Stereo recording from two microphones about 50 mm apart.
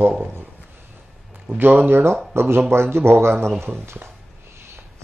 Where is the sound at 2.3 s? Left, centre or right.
Right.